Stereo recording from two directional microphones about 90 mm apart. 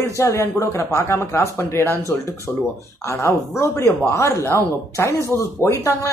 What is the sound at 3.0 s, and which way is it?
Speech, 30° left (ahead or behind).